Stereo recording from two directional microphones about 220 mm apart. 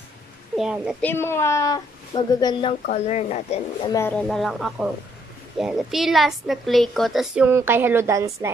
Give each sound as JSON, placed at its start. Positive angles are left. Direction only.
{"t": 0.6, "sound": "a woman's voice", "side_deg": -5}
{"t": 1.0, "sound": "a woman's voice", "side_deg": 10}
{"t": 2.9, "sound": "speech", "side_deg": 30}
{"t": 3.9, "sound": "a woman's voice", "side_deg": 10}